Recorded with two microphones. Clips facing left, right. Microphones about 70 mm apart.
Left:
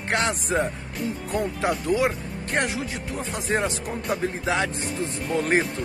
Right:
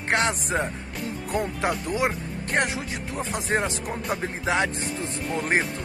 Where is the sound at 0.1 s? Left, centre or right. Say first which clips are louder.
Right 1 dB; right.